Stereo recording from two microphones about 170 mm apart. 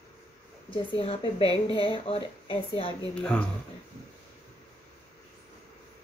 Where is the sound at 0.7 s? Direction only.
35° left (ahead or behind).